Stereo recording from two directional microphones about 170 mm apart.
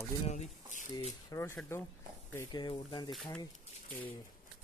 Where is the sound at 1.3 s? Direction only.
15° left (ahead or behind).